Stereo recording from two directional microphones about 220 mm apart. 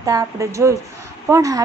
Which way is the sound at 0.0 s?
15° right (ahead or behind).